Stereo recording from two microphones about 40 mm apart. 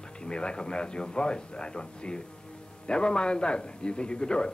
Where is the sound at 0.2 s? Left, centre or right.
Left.